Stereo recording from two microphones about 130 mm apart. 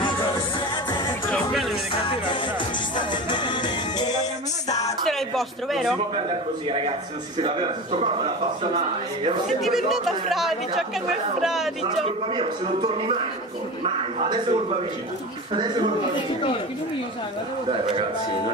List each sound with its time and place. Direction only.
3.0 s music: 35° left (ahead or behind)
5.0 s speech: centre (ahead or behind)
7.4 s a man's voice: 50° right (ahead or behind)
9.5 s speech: centre (ahead or behind)
12.4 s a man's voice: 40° right (ahead or behind)